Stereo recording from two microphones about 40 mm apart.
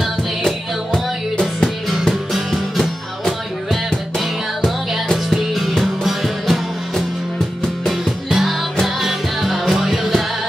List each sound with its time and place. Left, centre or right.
2.5 s music: centre
5.3 s music: centre